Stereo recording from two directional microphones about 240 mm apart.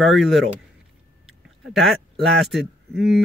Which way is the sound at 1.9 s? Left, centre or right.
Centre.